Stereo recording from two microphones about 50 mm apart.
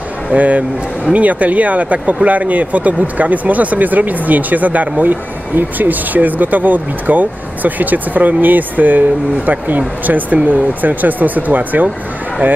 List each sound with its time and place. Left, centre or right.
0.3 s speech: right